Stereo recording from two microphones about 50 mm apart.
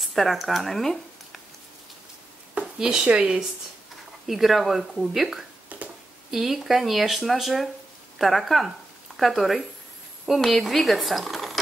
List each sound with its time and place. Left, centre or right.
0.0 s speech: centre
2.8 s speech: centre
4.3 s speech: centre